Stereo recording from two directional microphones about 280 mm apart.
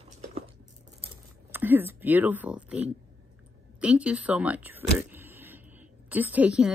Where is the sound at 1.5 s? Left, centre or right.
Centre.